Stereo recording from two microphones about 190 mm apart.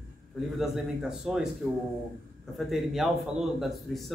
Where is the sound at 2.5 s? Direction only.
Centre (ahead or behind).